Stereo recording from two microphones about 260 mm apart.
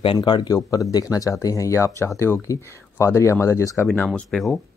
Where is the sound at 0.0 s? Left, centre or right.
Centre.